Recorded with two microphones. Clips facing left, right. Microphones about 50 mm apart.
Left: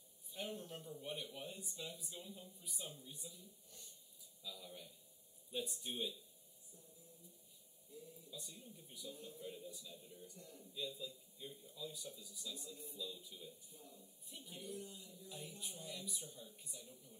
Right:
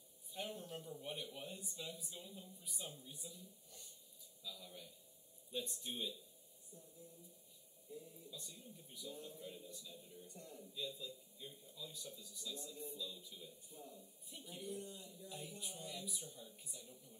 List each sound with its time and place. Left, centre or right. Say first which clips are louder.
0.3 s a man's voice: even; centre
8.3 s a man's voice: left 1 dB; centre
10.2 s speech: right 2 dB; right
10.6 s a man's voice: left 1 dB; centre
14.6 s speech: right 2 dB; right
15.2 s a man's voice: right 1 dB; centre